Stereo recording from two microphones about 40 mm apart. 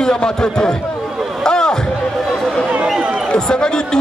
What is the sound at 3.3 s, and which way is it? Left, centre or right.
Speech, left.